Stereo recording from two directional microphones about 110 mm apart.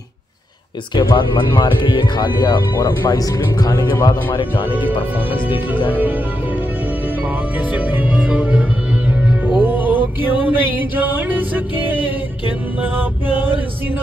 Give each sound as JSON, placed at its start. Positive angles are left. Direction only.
{"t": 0.9, "sound": "speech", "side_deg": 45}
{"t": 4.3, "sound": "speech", "side_deg": 50}
{"t": 4.6, "sound": "music", "side_deg": -15}
{"t": 7.5, "sound": "music", "side_deg": -15}